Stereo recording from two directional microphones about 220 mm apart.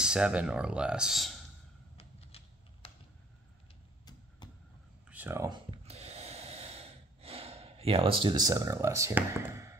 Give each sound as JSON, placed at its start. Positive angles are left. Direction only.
{"t": 0.0, "sound": "speech", "side_deg": -5}
{"t": 2.0, "sound": "typewriter", "side_deg": 25}
{"t": 4.4, "sound": "a sound", "side_deg": 20}
{"t": 5.1, "sound": "snort", "side_deg": -10}